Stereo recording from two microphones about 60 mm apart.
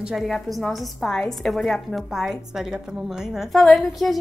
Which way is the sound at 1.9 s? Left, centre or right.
Centre.